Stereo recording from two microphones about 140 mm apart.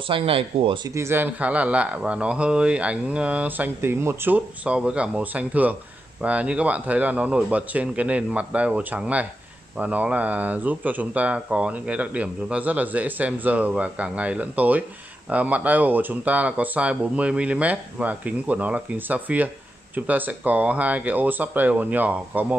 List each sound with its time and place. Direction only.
0.1 s speech: 40° right (ahead or behind)
0.9 s speech: 15° right (ahead or behind)